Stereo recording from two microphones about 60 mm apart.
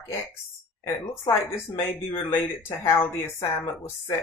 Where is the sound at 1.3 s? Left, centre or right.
Left.